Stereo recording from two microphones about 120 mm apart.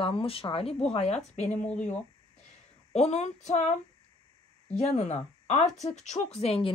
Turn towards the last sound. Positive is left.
turn(degrees=60)  # may be behind; listen again after turning